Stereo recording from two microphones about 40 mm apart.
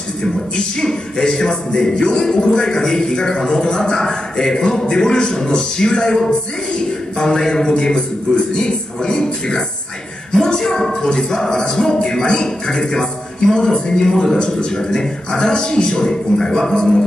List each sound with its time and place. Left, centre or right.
0.7 s music: centre
8.5 s a man's voice: left
9.1 s music: centre